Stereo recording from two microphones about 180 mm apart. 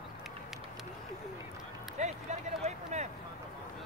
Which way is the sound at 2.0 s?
40° right (ahead or behind).